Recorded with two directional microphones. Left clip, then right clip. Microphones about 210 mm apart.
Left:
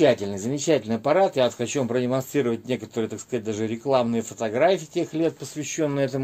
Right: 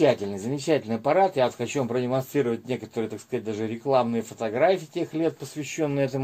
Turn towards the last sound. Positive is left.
turn(degrees=35)  # may be behind; listen again after turning